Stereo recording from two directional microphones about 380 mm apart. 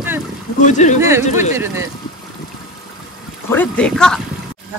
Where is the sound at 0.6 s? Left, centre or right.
Centre.